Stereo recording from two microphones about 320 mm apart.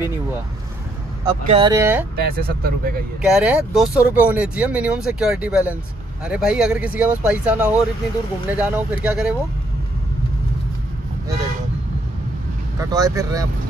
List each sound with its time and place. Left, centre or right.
1.2 s speech: centre
2.1 s speech: right
3.2 s speech: centre
12.7 s speech: centre